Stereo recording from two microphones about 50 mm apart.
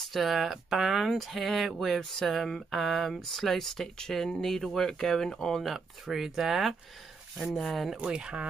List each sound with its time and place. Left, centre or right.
0.0 s speech: centre
8.0 s speech: centre